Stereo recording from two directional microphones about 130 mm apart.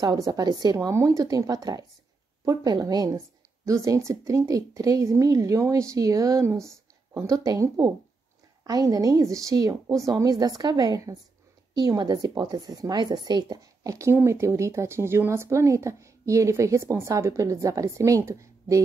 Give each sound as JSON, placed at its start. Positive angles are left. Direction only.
{"t": 0.0, "sound": "a woman's voice", "side_deg": -30}